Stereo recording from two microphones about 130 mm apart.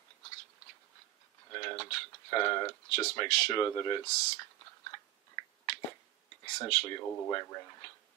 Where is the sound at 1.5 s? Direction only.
25° left (ahead or behind).